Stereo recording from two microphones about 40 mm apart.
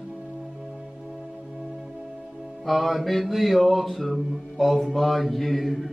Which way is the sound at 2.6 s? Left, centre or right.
Centre.